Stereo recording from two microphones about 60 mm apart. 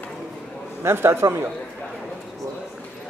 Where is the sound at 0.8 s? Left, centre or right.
Right.